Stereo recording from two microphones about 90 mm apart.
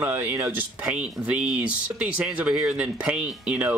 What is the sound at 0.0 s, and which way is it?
Speech, 30° right (ahead or behind).